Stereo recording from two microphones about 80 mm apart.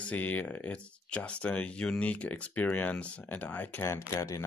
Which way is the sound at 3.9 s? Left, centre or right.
Left.